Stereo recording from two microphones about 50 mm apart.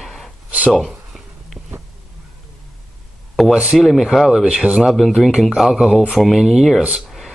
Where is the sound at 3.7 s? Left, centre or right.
Centre.